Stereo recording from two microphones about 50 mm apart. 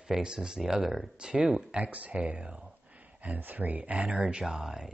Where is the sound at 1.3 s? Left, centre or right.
Centre.